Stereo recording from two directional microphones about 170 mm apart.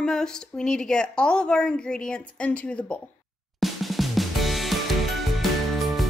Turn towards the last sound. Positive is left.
turn(degrees=0)  # may be behind; listen again after turning